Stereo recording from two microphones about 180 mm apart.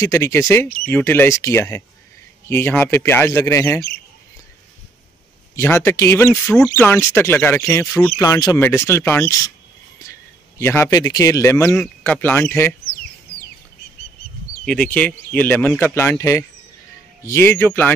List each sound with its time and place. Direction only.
0.0 s speech: 15° left (ahead or behind)
5.6 s speech: 15° left (ahead or behind)
10.6 s speech: 15° left (ahead or behind)
11.7 s speech: 5° left (ahead or behind)
12.8 s bird: 65° left (ahead or behind)
14.6 s speech: 5° left (ahead or behind)